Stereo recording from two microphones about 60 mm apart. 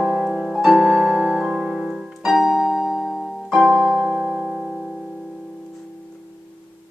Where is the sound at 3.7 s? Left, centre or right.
Centre.